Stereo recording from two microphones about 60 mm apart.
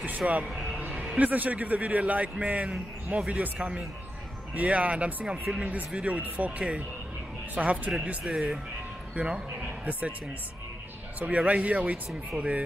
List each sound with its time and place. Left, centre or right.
0.2 s speech: right
0.7 s a sound: right
1.1 s speech: right
7.5 s speech: right
8.2 s speech: centre
9.1 s speech: centre
11.1 s speech: right